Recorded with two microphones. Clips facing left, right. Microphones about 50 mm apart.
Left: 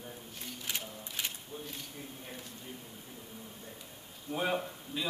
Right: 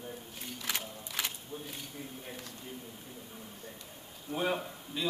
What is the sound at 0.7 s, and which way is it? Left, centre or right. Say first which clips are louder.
Speech: right 3 dB; right.